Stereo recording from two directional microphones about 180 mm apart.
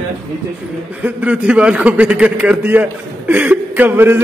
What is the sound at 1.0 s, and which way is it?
A man's voice, 10° right (ahead or behind).